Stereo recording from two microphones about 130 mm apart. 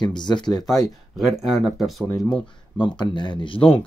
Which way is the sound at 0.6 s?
Centre (ahead or behind).